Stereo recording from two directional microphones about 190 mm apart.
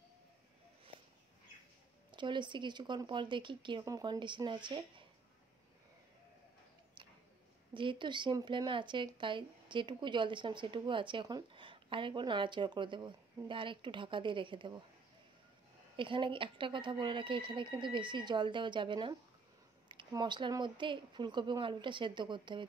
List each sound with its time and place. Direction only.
2.0 s speech: 25° right (ahead or behind)
7.7 s speech: 25° right (ahead or behind)
16.0 s speech: 25° right (ahead or behind)